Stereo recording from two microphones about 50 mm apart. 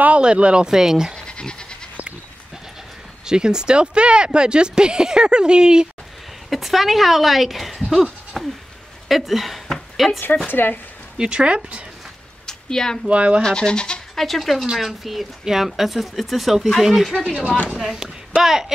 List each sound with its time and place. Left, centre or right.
0.0 s speech: right
1.1 s goat: centre
3.3 s speech: centre
6.5 s speech: centre
8.3 s sheep: centre
9.1 s speech: centre
10.5 s speech: left
11.1 s speech: centre
12.4 s a sound: centre
13.1 s speech: right
13.4 s speech: centre
14.1 s speech: centre